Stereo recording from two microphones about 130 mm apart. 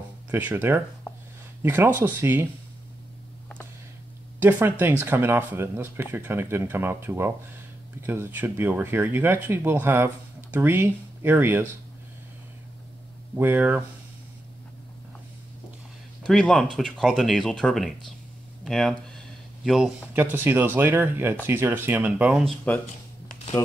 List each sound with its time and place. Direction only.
0.3 s speech: 15° right (ahead or behind)
4.4 s speech: 15° right (ahead or behind)
13.4 s speech: 15° right (ahead or behind)
16.3 s speech: 5° left (ahead or behind)
18.6 s a sound: centre (ahead or behind)
20.2 s speech: 15° right (ahead or behind)
22.7 s speech: 15° left (ahead or behind)